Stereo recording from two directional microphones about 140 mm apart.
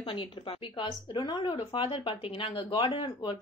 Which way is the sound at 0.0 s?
40° left (ahead or behind).